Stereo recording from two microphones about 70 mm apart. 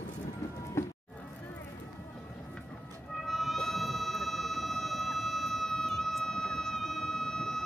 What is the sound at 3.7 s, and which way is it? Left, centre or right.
Vehicle, centre.